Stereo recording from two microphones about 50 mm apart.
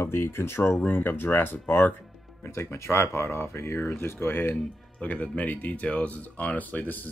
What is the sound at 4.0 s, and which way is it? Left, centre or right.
Speech, left.